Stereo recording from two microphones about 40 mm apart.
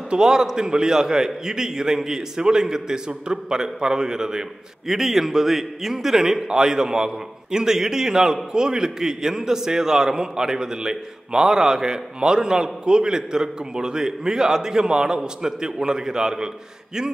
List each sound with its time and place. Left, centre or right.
0.1 s a man's voice: centre
4.8 s a man's voice: centre